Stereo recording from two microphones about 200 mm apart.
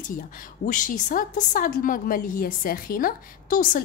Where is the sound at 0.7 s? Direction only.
40° left (ahead or behind).